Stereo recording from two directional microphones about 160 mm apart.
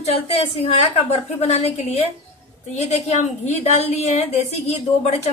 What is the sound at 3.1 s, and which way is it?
A woman's voice, 45° left (ahead or behind).